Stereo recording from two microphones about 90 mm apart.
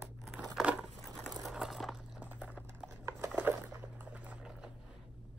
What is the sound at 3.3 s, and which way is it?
Liquid, 20° right (ahead or behind).